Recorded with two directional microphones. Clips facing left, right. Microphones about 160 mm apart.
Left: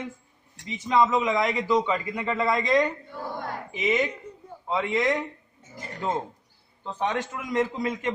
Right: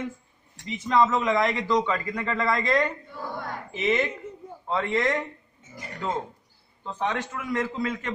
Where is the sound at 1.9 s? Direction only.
15° left (ahead or behind).